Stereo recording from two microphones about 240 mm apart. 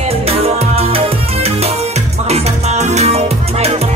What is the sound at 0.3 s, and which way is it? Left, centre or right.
Music, right.